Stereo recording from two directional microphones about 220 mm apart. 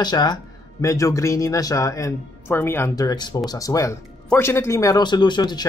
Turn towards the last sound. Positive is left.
turn(degrees=20)  # may be behind; listen again after turning